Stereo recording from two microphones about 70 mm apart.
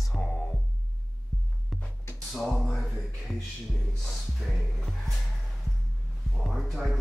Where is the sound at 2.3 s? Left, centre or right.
Centre.